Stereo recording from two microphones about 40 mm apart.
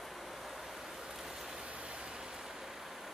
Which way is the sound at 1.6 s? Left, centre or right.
Right.